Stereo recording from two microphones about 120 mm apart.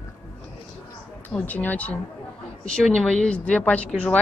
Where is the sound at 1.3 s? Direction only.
15° left (ahead or behind).